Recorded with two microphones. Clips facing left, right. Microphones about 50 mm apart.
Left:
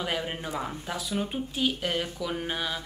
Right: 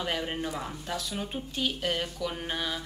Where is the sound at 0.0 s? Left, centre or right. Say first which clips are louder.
Even; centre.